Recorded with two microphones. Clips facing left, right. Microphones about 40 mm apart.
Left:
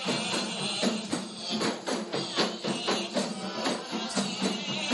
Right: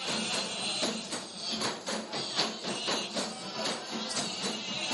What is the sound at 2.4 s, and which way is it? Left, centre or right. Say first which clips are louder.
Music: left 4 dB; centre.